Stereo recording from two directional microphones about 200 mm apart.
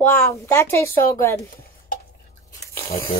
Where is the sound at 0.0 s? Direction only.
10° left (ahead or behind).